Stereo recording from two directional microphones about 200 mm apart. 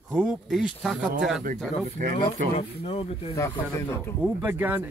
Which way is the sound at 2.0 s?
45° right (ahead or behind).